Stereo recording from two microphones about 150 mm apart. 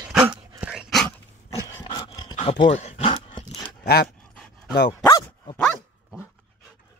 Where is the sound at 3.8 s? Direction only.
90° left.